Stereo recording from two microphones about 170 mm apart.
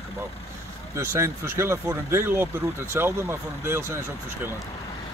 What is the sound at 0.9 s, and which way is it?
Speech, 15° right (ahead or behind).